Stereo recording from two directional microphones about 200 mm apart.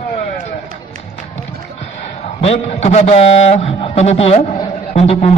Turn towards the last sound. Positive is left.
turn(degrees=30)  # may be behind; listen again after turning